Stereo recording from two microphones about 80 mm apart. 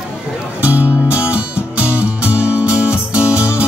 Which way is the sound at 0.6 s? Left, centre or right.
Centre.